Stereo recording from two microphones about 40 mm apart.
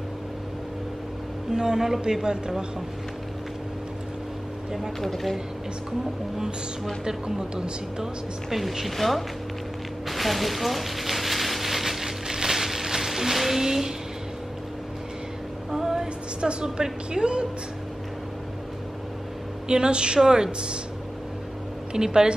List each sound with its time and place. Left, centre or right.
1.5 s speech: centre
5.0 s speech: centre
7.1 s speech: centre
8.0 s speech: centre
10.0 s rain on surface: centre
15.7 s a sound: centre
16.3 s a woman's voice: right
19.7 s a woman's voice: right
21.9 s speech: centre